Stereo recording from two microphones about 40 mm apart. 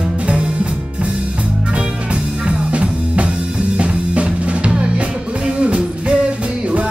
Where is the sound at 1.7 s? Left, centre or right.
Right.